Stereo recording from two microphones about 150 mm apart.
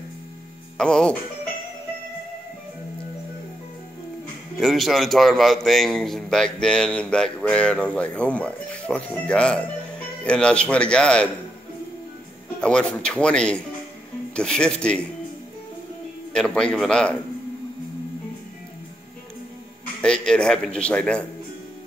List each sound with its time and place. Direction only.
0.7 s a man's voice: 5° left (ahead or behind)
4.6 s a man's voice: centre (ahead or behind)
12.5 s a man's voice: 5° left (ahead or behind)
16.3 s a man's voice: 5° left (ahead or behind)
20.0 s a man's voice: 5° left (ahead or behind)